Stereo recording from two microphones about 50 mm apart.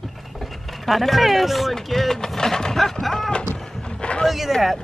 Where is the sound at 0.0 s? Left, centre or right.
Centre.